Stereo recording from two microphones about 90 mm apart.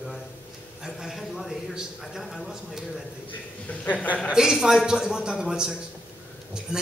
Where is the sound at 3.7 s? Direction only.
15° left (ahead or behind).